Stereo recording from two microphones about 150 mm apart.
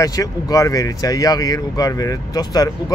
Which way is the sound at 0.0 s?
25° left (ahead or behind).